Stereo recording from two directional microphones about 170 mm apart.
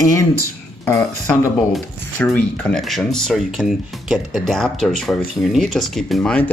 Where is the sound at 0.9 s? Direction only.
15° left (ahead or behind).